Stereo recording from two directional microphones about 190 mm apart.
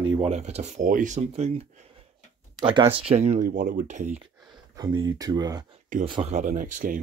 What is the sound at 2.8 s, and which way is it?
Speech, 30° right (ahead or behind).